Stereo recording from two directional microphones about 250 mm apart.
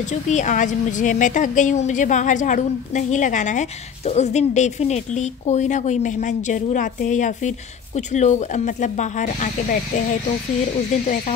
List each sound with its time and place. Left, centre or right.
0.1 s a woman's voice: left